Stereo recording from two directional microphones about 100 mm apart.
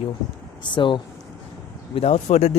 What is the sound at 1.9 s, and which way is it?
Speech, 90° left.